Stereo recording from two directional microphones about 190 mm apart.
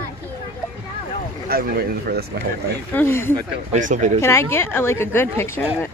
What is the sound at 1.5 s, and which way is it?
Speech, 50° right (ahead or behind).